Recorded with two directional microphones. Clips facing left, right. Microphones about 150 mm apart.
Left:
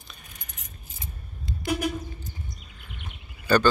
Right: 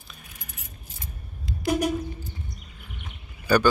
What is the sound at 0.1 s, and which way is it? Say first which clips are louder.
Coin: right 2 dB; 5° right (ahead or behind).